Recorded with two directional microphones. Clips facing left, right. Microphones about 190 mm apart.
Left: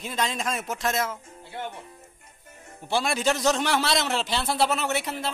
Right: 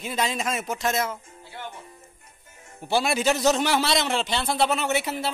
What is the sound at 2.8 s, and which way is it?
A man's voice, 5° right (ahead or behind).